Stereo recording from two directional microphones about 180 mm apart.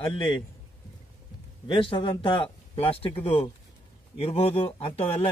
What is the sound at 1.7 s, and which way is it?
A man's voice, 30° left (ahead or behind).